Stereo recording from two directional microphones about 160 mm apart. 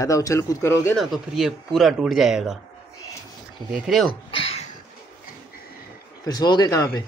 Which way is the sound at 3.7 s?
Centre (ahead or behind).